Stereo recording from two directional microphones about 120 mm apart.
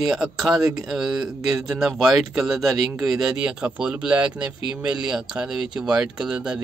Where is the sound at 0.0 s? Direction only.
Centre (ahead or behind).